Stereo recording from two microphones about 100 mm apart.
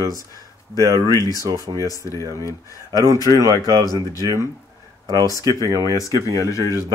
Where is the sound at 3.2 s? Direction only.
35° right (ahead or behind).